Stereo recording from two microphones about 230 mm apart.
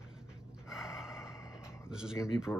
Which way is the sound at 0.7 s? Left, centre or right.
Centre.